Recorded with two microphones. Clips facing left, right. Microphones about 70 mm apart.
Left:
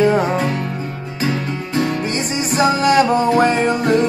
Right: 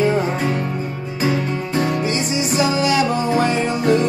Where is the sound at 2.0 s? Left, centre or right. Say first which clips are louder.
Even; left.